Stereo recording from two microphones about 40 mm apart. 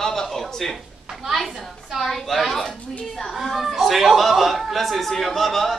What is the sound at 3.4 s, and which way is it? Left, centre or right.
A man's voice, centre.